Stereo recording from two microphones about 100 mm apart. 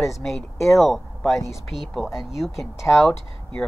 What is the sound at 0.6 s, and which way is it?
Speech, centre (ahead or behind).